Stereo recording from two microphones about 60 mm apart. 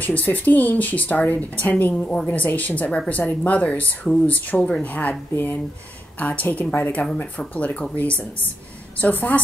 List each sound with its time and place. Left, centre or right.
0.0 s speech: left